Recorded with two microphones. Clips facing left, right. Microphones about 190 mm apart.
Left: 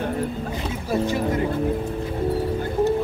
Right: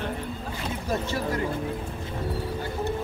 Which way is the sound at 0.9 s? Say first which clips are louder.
Left 6 dB; 20° left (ahead or behind).